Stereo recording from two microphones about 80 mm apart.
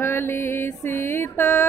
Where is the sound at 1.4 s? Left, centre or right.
Left.